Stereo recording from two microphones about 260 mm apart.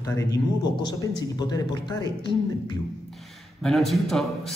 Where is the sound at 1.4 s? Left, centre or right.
Centre.